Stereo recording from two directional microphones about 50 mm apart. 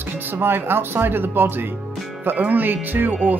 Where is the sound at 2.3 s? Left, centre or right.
Right.